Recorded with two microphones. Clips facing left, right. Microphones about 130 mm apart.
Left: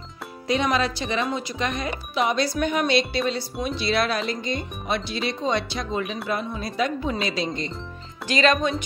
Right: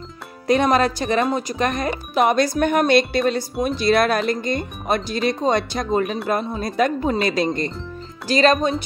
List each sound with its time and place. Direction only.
0.5 s speech: 50° right (ahead or behind)
8.3 s speech: 35° right (ahead or behind)